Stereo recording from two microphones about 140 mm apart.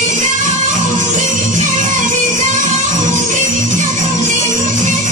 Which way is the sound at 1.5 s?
65° right (ahead or behind).